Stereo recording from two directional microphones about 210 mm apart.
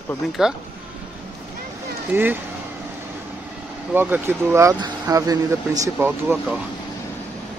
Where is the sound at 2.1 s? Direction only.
10° right (ahead or behind).